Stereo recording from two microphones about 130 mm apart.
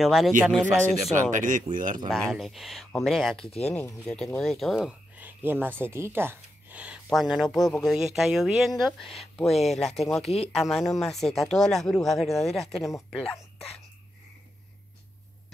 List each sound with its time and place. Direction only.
0.0 s speech: centre (ahead or behind)
0.5 s speech: 10° left (ahead or behind)
1.3 s speech: 75° right (ahead or behind)
2.0 s speech: 5° left (ahead or behind)
3.4 s speech: 50° left (ahead or behind)
4.0 s speech: 5° left (ahead or behind)
5.1 s speech: 15° right (ahead or behind); by 13.7 s 5° left (ahead or behind)